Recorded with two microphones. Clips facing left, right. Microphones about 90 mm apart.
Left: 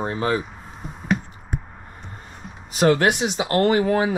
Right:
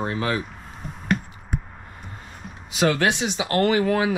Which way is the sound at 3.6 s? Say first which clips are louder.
Left 1 dB; 35° left (ahead or behind).